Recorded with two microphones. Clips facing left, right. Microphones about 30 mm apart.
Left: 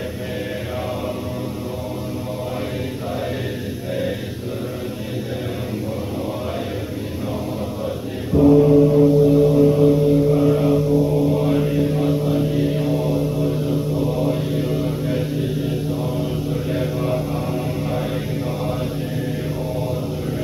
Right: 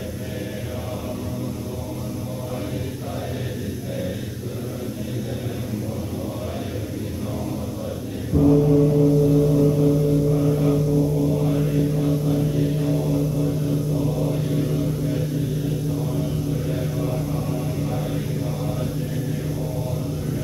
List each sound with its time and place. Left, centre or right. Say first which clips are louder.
8.3 s mantra: left 4 dB; centre